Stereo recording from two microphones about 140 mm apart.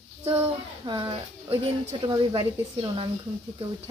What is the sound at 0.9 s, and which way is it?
Speech, 35° right (ahead or behind).